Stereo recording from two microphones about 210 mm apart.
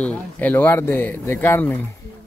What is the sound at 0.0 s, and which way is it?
Speech, 5° left (ahead or behind).